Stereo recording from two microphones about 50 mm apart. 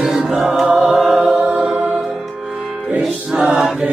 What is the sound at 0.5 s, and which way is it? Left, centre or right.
Music, centre.